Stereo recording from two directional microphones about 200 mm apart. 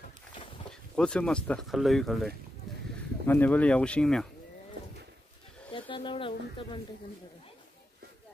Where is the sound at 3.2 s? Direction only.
10° left (ahead or behind).